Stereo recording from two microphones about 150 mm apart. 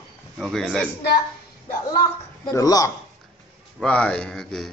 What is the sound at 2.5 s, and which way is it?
Speech, 25° left (ahead or behind).